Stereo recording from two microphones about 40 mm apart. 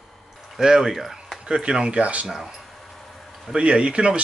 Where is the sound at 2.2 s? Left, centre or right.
Centre.